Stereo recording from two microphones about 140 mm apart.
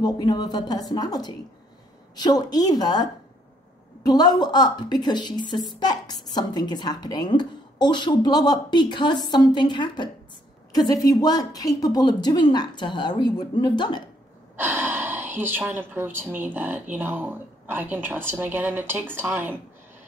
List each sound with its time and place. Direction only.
0.0 s a woman's voice: 30° left (ahead or behind)
14.6 s speech: 15° right (ahead or behind)